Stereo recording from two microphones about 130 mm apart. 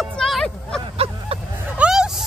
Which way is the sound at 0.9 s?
45° right (ahead or behind).